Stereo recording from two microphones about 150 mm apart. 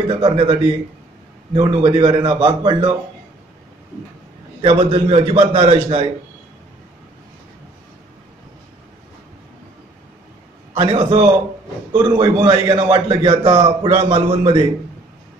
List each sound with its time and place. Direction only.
0.1 s a man's voice: 35° right (ahead or behind)
4.6 s a man's voice: 35° right (ahead or behind)
10.8 s a man's voice: 35° right (ahead or behind)